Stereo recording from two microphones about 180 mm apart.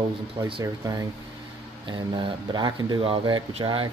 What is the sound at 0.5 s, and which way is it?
Speech, 25° right (ahead or behind).